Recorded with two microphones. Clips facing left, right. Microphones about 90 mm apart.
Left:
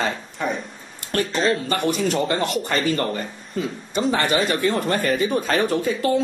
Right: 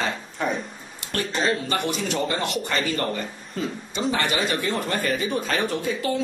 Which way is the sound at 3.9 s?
45° left (ahead or behind).